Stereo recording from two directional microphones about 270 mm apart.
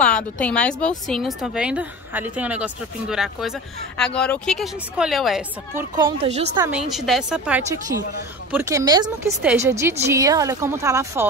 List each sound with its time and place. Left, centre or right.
0.0 s a woman's voice: centre
5.9 s a woman's voice: centre
6.6 s a woman's voice: centre